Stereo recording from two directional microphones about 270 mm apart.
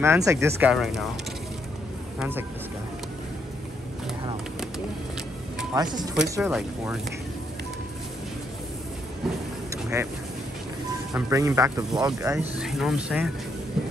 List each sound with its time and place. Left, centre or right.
0.0 s speech: centre
2.1 s speech: centre
5.8 s speech: centre
9.9 s speech: centre
11.1 s speech: centre